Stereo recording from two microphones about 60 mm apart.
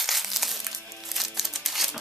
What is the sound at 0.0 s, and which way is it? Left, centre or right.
Crumpling, centre.